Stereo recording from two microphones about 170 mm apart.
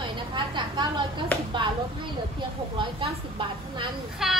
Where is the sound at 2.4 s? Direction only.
30° right (ahead or behind).